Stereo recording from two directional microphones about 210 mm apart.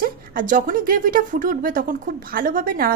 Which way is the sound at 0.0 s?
40° right (ahead or behind).